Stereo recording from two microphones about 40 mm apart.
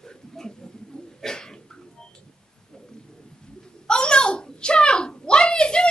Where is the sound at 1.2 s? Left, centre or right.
Centre.